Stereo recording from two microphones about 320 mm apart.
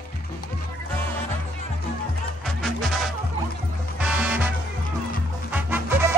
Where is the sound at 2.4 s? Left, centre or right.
Centre.